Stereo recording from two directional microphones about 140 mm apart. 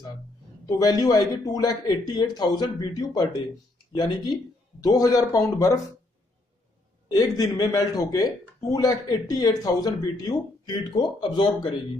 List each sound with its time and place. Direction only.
0.7 s speech: 25° left (ahead or behind)
7.1 s speech: 30° left (ahead or behind)